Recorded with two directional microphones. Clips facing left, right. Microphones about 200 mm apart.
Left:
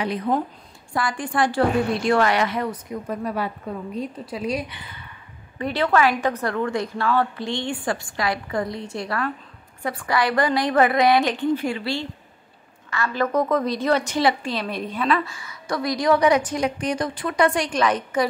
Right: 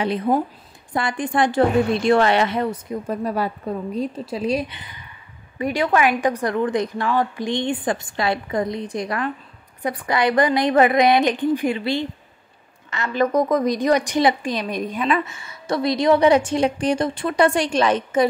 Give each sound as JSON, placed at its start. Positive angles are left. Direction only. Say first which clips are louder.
{"t": 0.9, "sound": "a woman's voice", "louder": "right 2 dB", "side_deg": -20}